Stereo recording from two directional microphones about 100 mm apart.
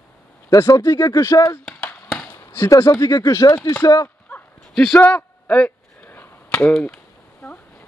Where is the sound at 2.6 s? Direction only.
30° left (ahead or behind).